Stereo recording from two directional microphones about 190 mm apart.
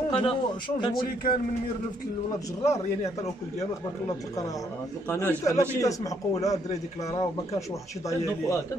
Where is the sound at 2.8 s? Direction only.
35° left (ahead or behind).